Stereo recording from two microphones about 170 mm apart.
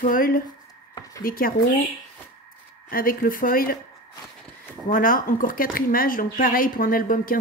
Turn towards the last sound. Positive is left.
turn(degrees=55)  # may be behind; listen again after turning